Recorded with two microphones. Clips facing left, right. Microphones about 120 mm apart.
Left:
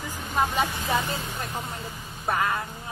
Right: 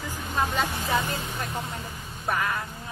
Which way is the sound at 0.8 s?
25° left (ahead or behind).